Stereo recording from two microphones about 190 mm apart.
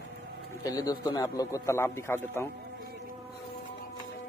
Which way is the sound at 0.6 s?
20° left (ahead or behind).